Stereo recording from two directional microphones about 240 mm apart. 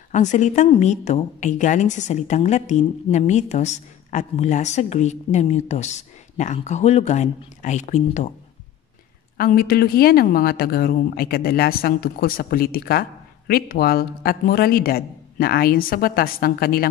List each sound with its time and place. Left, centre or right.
0.1 s a woman's voice: left
9.4 s speech: left